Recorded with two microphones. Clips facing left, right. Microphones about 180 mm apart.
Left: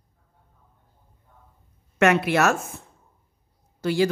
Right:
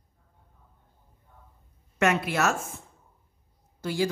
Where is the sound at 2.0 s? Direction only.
70° left (ahead or behind).